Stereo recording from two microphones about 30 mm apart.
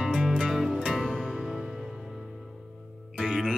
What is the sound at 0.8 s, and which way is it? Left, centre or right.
Music, centre.